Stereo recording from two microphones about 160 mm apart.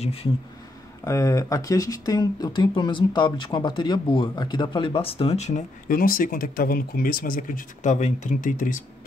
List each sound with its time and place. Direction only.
0.0 s speech: 40° left (ahead or behind)
1.0 s speech: 20° left (ahead or behind); by 5.6 s 40° left (ahead or behind)
5.9 s speech: 65° left (ahead or behind)